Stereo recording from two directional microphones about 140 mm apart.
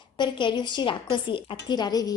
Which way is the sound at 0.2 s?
35° left (ahead or behind).